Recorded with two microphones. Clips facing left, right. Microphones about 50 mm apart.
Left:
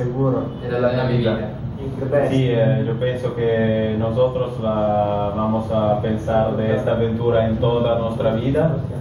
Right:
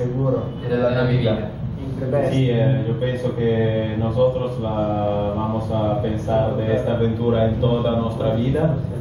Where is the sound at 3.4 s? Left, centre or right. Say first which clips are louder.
Left 2 dB; left.